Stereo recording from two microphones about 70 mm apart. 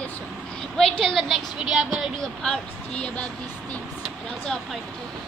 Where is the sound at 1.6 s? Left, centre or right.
Centre.